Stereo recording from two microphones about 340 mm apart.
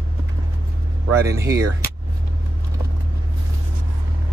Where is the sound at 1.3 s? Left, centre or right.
Centre.